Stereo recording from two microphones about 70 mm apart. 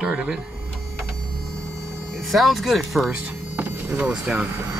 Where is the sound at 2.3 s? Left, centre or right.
Centre.